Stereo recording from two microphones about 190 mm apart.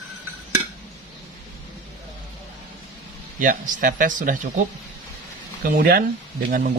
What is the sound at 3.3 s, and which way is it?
Speech, 45° right (ahead or behind).